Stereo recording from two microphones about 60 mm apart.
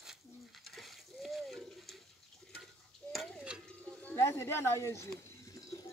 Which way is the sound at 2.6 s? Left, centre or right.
Centre.